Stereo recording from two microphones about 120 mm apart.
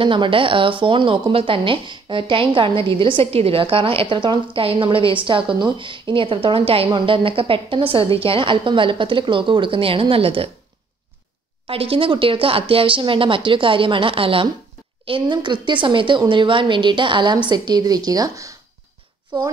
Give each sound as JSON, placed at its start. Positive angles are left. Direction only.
{"t": 0.0, "sound": "a woman's voice", "side_deg": -45}
{"t": 11.6, "sound": "a woman's voice", "side_deg": -50}